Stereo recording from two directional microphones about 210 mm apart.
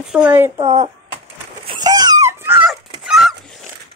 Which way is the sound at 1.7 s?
20° right (ahead or behind).